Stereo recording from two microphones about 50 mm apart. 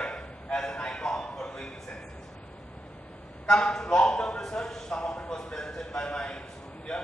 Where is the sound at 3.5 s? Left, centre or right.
Centre.